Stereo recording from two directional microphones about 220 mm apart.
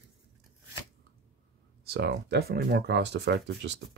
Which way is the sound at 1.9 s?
50° right (ahead or behind).